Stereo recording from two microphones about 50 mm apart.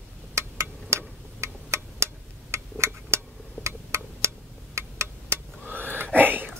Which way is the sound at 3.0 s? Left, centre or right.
Right.